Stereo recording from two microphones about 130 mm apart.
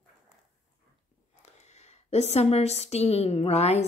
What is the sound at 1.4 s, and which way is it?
A woman's voice, 60° left (ahead or behind).